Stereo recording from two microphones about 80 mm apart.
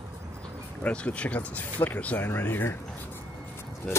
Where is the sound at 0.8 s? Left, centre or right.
Centre.